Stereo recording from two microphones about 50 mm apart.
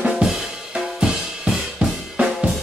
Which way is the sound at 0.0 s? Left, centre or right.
Centre.